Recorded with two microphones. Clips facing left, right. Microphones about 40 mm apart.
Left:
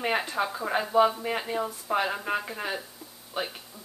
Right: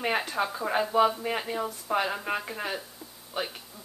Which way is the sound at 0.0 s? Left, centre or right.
Centre.